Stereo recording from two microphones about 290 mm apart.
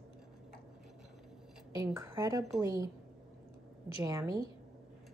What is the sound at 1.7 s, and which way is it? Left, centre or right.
A woman's voice, centre.